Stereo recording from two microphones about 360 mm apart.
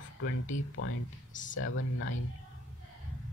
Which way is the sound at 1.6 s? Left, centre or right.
Left.